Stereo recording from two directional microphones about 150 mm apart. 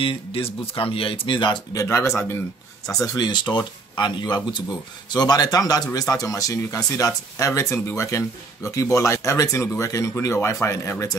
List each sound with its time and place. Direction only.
0.0 s speech: 40° left (ahead or behind); by 11.1 s 20° left (ahead or behind)